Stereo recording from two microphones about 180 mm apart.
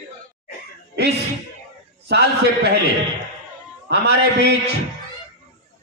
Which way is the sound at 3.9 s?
70° right (ahead or behind).